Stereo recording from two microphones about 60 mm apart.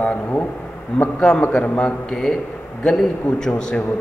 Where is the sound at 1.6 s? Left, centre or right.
Left.